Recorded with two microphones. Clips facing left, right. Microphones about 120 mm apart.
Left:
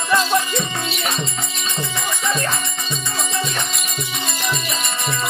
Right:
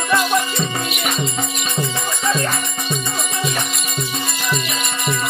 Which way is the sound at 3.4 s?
10° right (ahead or behind).